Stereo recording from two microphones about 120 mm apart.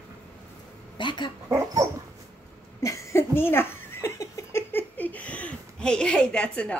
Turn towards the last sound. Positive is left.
turn(degrees=10)  # may be behind; listen again after turning